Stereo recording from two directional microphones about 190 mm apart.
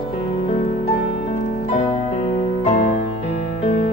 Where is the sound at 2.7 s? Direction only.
35° left (ahead or behind).